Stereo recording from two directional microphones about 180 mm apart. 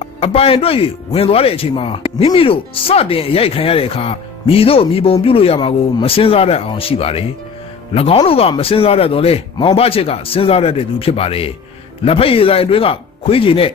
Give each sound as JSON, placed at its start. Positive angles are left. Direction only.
{"t": 0.0, "sound": "speech", "side_deg": 35}